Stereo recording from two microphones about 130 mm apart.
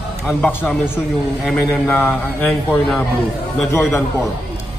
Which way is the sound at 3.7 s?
20° left (ahead or behind).